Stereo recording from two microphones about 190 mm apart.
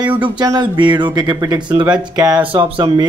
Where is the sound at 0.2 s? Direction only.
20° right (ahead or behind).